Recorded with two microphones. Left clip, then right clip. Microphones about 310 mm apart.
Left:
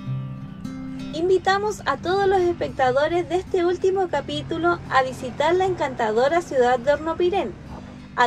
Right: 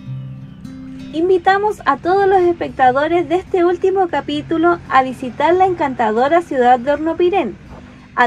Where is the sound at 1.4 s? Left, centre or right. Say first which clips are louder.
Right 7 dB; right.